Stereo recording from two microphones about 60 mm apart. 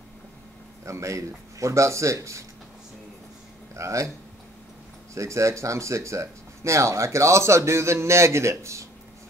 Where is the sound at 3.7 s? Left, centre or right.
Right.